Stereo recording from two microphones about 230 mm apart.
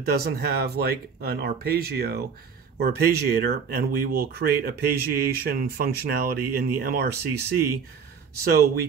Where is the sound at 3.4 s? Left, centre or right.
Right.